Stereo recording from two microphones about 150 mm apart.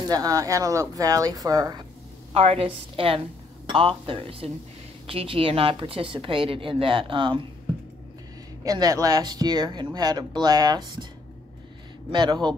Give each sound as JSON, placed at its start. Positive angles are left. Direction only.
{"t": 0.0, "sound": "speech", "side_deg": -25}
{"t": 2.3, "sound": "a woman's voice", "side_deg": -40}
{"t": 8.6, "sound": "speech", "side_deg": -25}
{"t": 12.1, "sound": "speech", "side_deg": -30}